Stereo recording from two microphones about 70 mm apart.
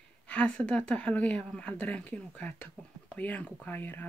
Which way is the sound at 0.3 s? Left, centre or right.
Centre.